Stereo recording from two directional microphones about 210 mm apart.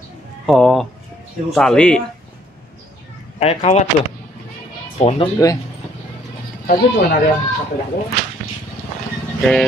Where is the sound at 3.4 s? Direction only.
30° left (ahead or behind).